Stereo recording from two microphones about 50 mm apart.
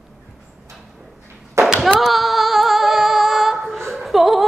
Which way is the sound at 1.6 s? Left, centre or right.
Right.